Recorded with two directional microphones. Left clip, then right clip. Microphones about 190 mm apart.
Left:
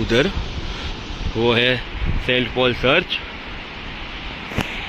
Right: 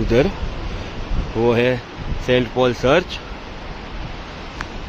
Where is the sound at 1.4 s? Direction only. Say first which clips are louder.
Even; 10° right (ahead or behind).